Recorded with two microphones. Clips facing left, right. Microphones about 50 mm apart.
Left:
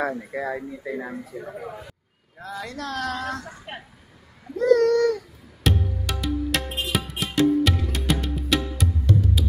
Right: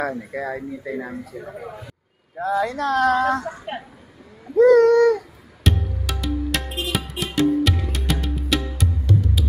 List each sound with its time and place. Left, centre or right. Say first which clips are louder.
0.1 s speech: right 1 dB; centre
2.3 s speech: right 11 dB; right
4.6 s a sound: right 6 dB; right
5.6 s music: even; centre